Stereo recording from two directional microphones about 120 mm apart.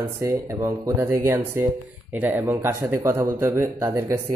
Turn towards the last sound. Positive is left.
turn(degrees=-20)  # may be behind; listen again after turning